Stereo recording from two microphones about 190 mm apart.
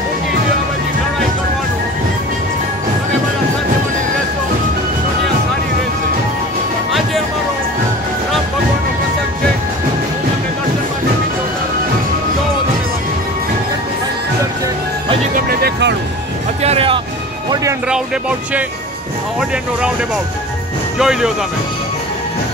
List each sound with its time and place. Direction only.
15.3 s music: 55° right (ahead or behind)
16.6 s music: 30° right (ahead or behind)
21.0 s speech: 5° right (ahead or behind)